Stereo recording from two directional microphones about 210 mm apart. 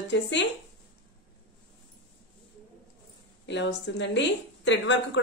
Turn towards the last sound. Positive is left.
turn(degrees=60)  # may be behind; listen again after turning